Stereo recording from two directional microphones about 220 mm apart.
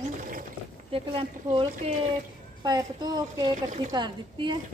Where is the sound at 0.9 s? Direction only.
25° right (ahead or behind).